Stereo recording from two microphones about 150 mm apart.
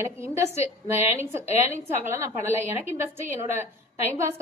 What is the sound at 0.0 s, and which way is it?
Speech, 20° right (ahead or behind).